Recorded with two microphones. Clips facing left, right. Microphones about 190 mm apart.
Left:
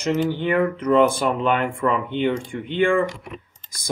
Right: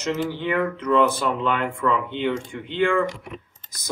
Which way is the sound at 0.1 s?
15° left (ahead or behind).